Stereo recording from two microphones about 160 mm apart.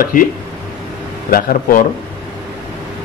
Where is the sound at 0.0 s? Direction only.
60° left (ahead or behind).